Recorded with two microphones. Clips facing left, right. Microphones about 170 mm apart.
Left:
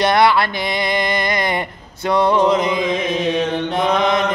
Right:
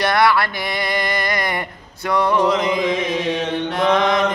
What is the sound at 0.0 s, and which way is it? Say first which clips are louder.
Mantra: left 2 dB; 20° left (ahead or behind).